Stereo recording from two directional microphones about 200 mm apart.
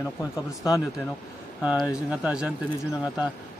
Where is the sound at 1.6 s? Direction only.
5° right (ahead or behind).